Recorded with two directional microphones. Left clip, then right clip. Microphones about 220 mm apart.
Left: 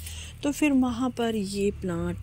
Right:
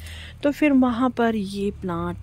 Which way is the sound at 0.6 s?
40° right (ahead or behind).